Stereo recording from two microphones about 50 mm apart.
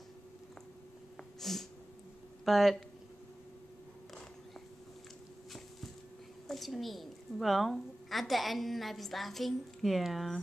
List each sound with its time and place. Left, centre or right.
1.4 s a sound: centre
2.4 s speech: centre
6.4 s a woman's voice: centre